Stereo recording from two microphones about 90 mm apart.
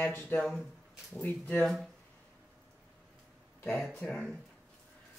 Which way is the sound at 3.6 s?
Centre (ahead or behind).